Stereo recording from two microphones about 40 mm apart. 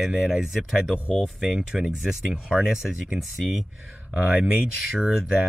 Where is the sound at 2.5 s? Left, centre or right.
Centre.